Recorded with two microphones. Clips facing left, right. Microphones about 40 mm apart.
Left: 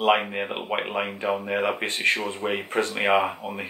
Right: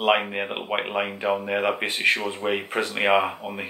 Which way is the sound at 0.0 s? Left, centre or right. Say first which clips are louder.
Even; centre.